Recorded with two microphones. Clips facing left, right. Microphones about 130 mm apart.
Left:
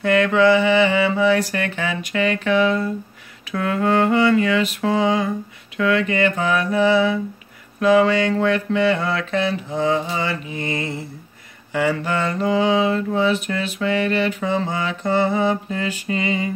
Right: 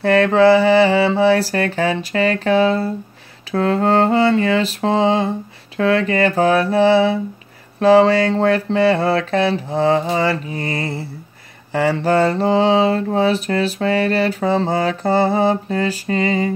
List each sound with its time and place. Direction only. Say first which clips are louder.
0.0 s mantra: right 3 dB; 35° right (ahead or behind)